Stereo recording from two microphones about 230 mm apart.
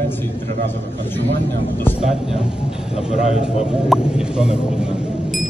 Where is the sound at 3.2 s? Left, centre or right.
Left.